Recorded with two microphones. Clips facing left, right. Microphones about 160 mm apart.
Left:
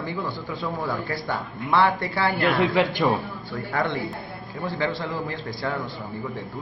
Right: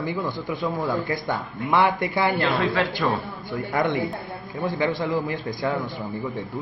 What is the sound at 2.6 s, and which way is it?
Speech, 15° left (ahead or behind).